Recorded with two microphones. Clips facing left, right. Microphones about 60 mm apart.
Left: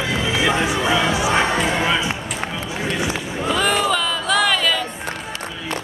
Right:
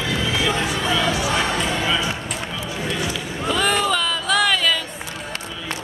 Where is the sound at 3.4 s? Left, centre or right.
Centre.